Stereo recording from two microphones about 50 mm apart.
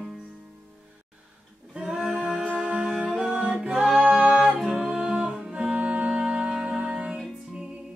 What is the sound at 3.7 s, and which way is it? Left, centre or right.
Music, centre.